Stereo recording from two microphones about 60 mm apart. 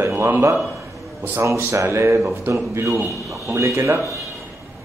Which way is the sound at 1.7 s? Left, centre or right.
Right.